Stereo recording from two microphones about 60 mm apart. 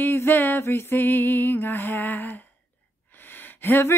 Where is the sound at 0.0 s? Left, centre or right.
Left.